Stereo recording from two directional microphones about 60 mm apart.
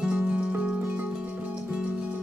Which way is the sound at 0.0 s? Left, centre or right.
Centre.